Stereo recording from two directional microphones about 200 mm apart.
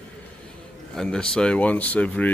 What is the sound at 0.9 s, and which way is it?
Speech, 5° left (ahead or behind).